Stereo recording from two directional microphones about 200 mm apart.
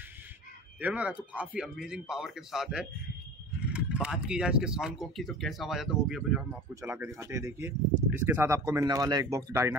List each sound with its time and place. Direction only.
0.7 s speech: 10° right (ahead or behind)
6.7 s speech: 15° right (ahead or behind)